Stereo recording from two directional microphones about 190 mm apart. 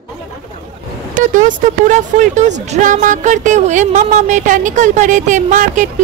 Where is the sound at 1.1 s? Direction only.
45° right (ahead or behind).